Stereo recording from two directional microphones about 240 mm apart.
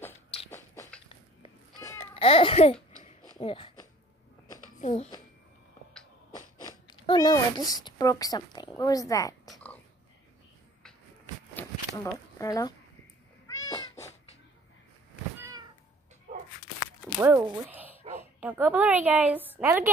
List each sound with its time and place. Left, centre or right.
1.0 s cat: centre
2.2 s a child's voice: left
3.3 s a sound: left
4.7 s speech: left
6.9 s a child's voice: centre
9.5 s dog: centre
11.5 s a sound: centre
17.2 s a woman's voice: centre